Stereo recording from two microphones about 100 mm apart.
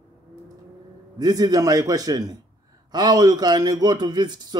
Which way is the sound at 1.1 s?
40° right (ahead or behind).